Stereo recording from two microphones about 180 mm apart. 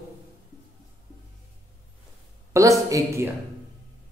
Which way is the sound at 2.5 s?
15° right (ahead or behind).